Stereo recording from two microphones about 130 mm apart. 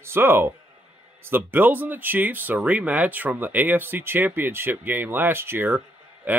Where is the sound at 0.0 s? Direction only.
20° right (ahead or behind).